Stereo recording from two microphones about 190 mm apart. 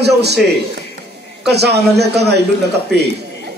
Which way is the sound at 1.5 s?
60° right (ahead or behind).